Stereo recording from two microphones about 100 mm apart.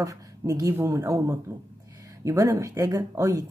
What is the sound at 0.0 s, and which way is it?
Speech, 35° right (ahead or behind).